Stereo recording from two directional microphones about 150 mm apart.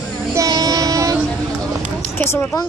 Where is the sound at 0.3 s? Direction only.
25° right (ahead or behind).